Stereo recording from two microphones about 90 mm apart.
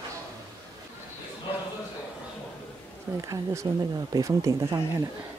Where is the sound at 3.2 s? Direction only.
35° right (ahead or behind).